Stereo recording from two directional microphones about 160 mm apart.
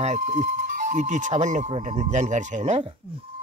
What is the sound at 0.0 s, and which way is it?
Speech, 45° right (ahead or behind).